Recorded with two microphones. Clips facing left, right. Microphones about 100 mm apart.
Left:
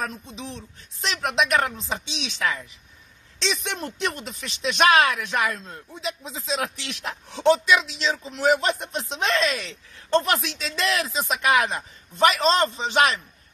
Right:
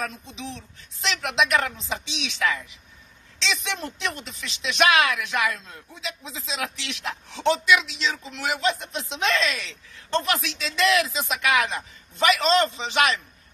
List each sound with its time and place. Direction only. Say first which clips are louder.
0.0 s speech: left 1 dB; 40° left (ahead or behind)